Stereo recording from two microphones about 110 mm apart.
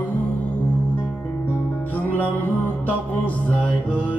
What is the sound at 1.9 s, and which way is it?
Music, 15° left (ahead or behind).